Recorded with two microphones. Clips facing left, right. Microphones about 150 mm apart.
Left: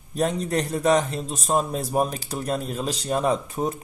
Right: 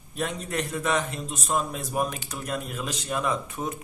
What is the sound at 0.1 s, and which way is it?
A man's voice, 35° left (ahead or behind).